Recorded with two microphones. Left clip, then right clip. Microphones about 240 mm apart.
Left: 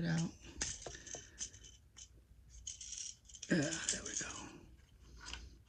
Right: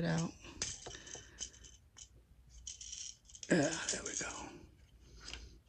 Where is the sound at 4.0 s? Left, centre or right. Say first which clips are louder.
Right 2 dB; centre.